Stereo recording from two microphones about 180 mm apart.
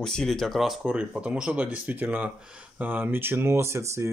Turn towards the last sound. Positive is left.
turn(degrees=-15)  # may be behind; listen again after turning